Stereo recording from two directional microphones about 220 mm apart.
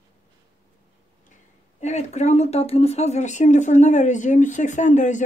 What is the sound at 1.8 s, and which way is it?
Speech, 30° left (ahead or behind).